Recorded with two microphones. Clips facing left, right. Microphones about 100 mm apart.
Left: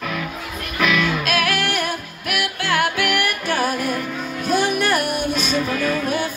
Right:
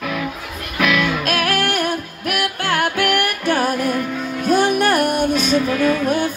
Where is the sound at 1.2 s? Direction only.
45° right (ahead or behind).